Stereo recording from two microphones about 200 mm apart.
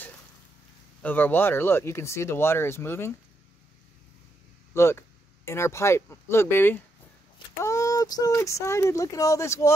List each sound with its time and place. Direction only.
1.0 s speech: 10° left (ahead or behind)
4.7 s speech: 10° left (ahead or behind)